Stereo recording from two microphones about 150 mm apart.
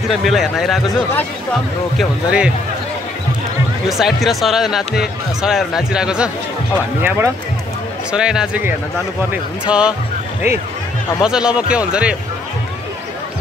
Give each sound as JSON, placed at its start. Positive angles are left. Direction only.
{"t": 0.1, "sound": "speech", "side_deg": 0}
{"t": 3.9, "sound": "speech", "side_deg": 0}
{"t": 7.0, "sound": "speech", "side_deg": -15}
{"t": 8.1, "sound": "speech", "side_deg": -5}
{"t": 11.2, "sound": "speech", "side_deg": -5}